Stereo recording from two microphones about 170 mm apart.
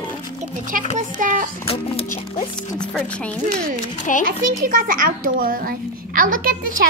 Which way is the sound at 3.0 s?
5° left (ahead or behind).